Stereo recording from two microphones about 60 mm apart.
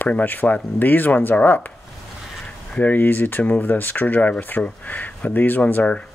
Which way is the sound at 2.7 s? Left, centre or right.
Left.